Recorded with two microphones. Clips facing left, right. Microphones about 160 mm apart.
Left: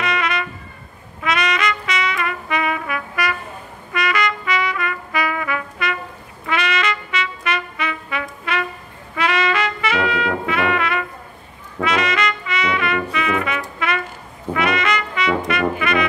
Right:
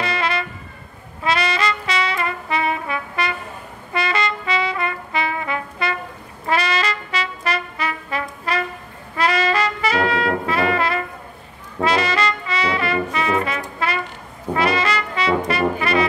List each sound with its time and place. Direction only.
0.0 s music: 30° right (ahead or behind)
1.2 s trumpet: 30° right (ahead or behind)
13.8 s brass instrument: 35° right (ahead or behind)